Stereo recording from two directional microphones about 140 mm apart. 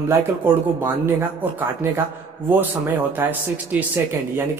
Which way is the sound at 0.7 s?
15° right (ahead or behind).